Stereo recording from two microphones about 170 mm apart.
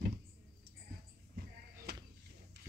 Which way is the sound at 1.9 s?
70° right (ahead or behind).